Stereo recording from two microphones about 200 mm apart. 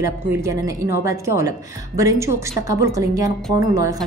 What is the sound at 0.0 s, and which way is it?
A woman's voice, 15° right (ahead or behind).